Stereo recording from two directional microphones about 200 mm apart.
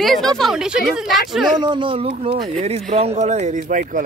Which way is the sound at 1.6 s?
25° right (ahead or behind).